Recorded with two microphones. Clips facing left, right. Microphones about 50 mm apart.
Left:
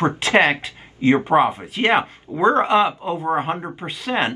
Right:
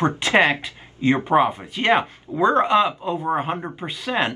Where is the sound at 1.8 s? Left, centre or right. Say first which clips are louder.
Left 1 dB; left.